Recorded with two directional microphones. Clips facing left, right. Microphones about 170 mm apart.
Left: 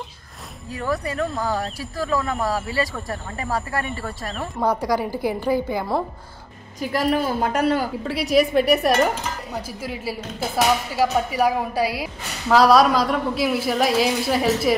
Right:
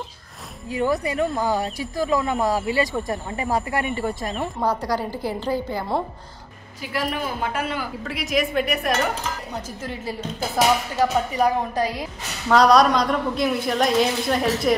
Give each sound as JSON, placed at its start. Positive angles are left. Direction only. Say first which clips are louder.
{"t": 0.7, "sound": "speech", "louder": "right 3 dB", "side_deg": -15}
{"t": 4.6, "sound": "a woman's voice", "louder": "left 4 dB", "side_deg": 10}
{"t": 6.8, "sound": "a woman's voice", "louder": "left 5 dB", "side_deg": 40}
{"t": 9.7, "sound": "a woman's voice", "louder": "left 1 dB", "side_deg": 10}